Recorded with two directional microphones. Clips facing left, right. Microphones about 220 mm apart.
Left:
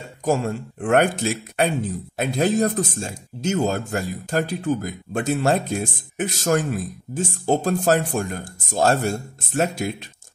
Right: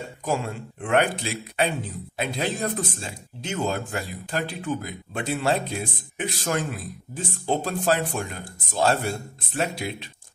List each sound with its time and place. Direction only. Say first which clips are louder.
0.2 s speech: left 6 dB; 45° left (ahead or behind)